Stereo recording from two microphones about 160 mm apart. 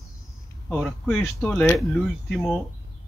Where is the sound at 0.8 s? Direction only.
10° left (ahead or behind).